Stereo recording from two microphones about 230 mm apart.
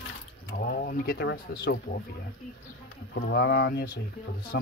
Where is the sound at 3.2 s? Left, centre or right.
Left.